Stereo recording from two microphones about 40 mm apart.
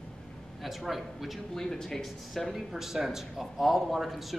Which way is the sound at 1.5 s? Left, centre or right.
Centre.